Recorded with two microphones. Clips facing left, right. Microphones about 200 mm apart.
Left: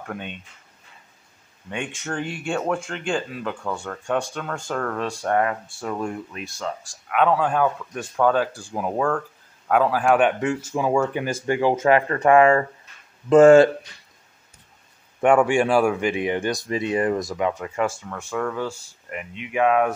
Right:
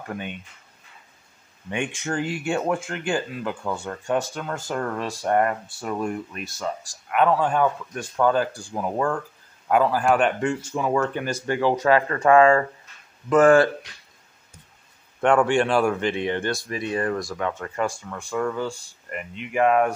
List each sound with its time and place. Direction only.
1.7 s speech: 10° right (ahead or behind); by 13.7 s 25° left (ahead or behind)
15.1 s speech: 10° left (ahead or behind)